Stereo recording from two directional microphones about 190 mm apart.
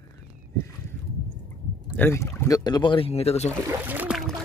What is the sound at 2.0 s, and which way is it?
Speech, 15° left (ahead or behind).